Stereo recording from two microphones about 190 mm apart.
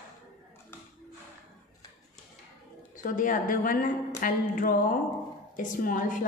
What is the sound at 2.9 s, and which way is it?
A woman's voice, 45° left (ahead or behind).